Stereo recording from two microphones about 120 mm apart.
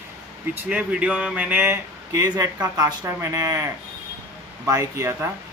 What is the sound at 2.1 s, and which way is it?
Speech, 25° right (ahead or behind).